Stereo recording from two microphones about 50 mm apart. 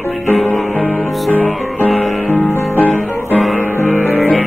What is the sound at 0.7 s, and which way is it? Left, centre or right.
Music, left.